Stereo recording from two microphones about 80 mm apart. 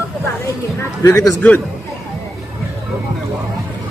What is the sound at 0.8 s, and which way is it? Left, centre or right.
Speech, left.